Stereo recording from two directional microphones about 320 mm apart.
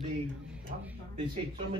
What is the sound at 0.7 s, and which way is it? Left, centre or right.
Speech, right.